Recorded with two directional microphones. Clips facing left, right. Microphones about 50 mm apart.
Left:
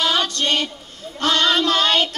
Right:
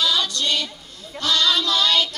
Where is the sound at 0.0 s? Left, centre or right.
Left.